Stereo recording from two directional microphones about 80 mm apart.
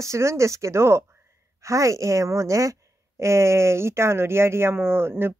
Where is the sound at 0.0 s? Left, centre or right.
Right.